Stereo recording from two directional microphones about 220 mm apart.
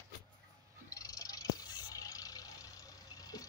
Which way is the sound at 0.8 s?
15° left (ahead or behind).